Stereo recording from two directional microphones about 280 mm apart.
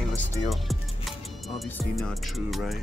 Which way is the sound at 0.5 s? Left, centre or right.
Centre.